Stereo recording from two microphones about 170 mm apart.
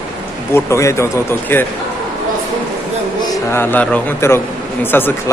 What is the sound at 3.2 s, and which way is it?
A man's voice, 15° left (ahead or behind).